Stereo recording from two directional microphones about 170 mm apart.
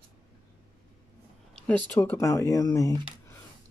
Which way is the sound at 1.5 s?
5° left (ahead or behind).